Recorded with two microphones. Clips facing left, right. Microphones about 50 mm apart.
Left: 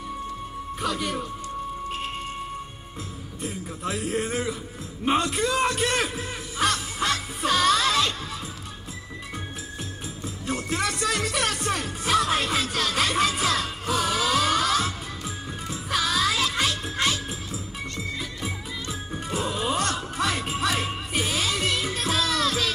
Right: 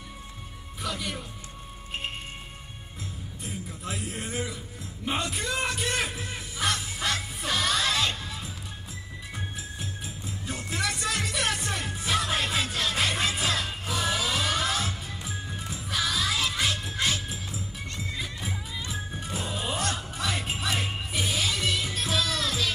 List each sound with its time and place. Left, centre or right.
0.7 s a man's voice: left
3.4 s a man's voice: left
6.1 s music: left
10.5 s music: left
16.1 s music: left
19.5 s music: left
20.2 s music: left